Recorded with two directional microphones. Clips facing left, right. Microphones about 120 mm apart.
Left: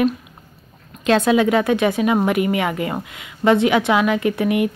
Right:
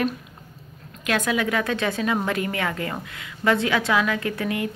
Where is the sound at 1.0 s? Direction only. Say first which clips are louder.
Left 8 dB; 25° left (ahead or behind).